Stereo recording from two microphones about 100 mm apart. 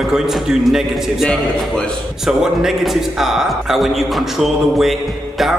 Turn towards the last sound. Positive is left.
turn(degrees=0)  # may be behind; listen again after turning